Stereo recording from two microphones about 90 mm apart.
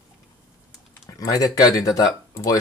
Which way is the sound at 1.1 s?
40° left (ahead or behind).